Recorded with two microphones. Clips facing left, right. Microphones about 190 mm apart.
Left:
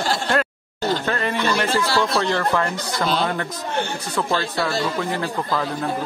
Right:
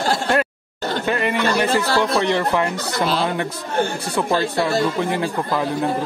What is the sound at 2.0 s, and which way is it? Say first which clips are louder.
Speech: right 2 dB; 15° right (ahead or behind).